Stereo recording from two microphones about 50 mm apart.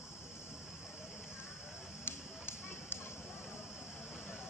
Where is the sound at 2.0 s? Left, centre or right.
Left.